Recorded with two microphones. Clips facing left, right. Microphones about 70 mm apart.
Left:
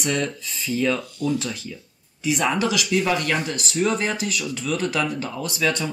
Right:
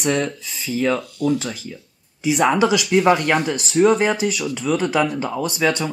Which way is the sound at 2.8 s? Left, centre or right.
Right.